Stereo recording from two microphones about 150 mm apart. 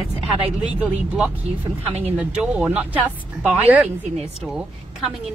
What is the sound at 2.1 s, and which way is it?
Speech, 10° right (ahead or behind).